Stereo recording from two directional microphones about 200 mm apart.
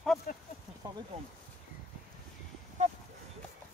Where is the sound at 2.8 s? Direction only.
35° right (ahead or behind).